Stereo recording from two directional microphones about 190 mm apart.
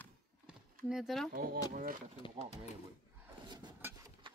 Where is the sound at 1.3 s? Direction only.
45° right (ahead or behind).